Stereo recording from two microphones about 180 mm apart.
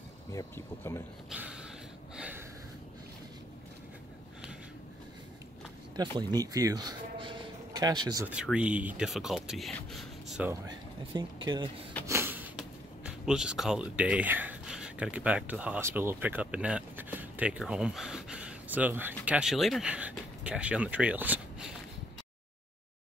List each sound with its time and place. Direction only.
0.3 s speech: 15° left (ahead or behind)
1.3 s mechanisms: 5° right (ahead or behind)
2.1 s a sound: 10° right (ahead or behind)
5.9 s speech: 20° right (ahead or behind)
8.3 s speech: 5° right (ahead or behind)
10.5 s speech: 25° right (ahead or behind)
12.1 s speech: 10° right (ahead or behind)